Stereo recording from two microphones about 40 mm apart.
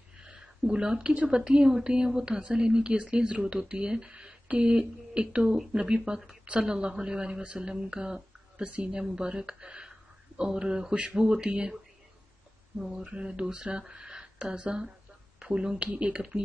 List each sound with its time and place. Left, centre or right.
0.2 s speech: right
9.0 s speech: centre
12.9 s speech: right